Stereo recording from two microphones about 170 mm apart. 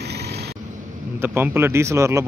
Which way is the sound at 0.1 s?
75° right (ahead or behind).